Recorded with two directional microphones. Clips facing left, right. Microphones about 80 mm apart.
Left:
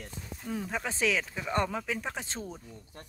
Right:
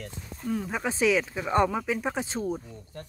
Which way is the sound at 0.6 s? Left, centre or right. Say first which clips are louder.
Right 5 dB; centre.